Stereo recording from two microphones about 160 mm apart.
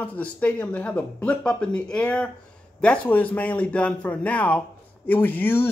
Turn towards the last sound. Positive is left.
turn(degrees=10)  # may be behind; listen again after turning